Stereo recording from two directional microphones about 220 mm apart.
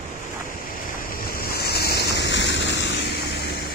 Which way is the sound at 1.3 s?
45° left (ahead or behind).